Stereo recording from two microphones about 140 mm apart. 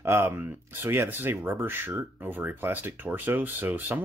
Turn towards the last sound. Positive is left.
turn(degrees=-15)  # may be behind; listen again after turning